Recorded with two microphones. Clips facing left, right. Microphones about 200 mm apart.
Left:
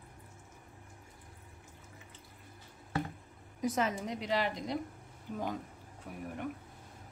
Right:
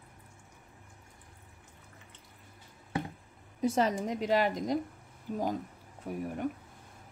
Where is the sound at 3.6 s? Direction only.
30° right (ahead or behind).